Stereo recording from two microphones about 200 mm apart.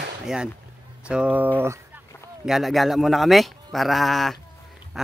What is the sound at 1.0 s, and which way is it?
Speech, 5° right (ahead or behind).